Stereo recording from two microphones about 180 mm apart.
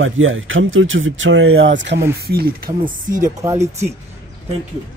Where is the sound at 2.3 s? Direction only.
60° right (ahead or behind).